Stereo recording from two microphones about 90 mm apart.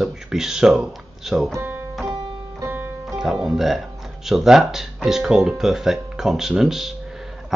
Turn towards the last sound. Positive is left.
turn(degrees=-5)  # may be behind; listen again after turning